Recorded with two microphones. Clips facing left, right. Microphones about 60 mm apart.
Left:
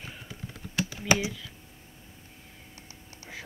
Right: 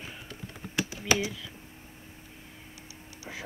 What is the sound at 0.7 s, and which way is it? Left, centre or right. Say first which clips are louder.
Typing: even; centre.